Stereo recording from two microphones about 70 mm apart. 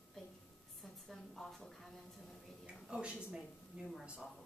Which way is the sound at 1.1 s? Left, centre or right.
Centre.